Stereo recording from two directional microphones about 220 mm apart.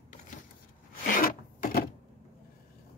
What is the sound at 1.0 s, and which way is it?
Rub, 40° left (ahead or behind).